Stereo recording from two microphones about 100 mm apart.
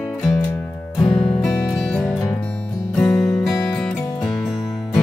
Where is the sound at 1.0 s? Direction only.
60° left (ahead or behind).